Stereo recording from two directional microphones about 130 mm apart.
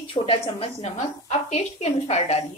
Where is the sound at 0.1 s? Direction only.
45° left (ahead or behind).